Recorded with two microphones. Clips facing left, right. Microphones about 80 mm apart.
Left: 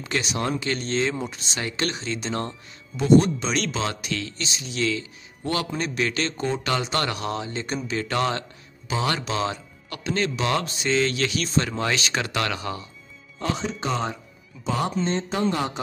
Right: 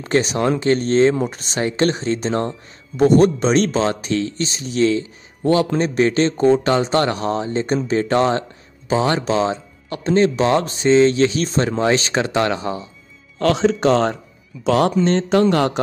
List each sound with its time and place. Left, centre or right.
0.0 s speech: right
11.4 s speech: right
11.7 s speech: right
13.4 s speech: right